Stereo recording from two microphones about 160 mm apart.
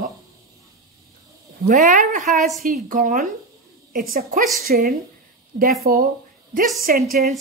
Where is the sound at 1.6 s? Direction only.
55° right (ahead or behind).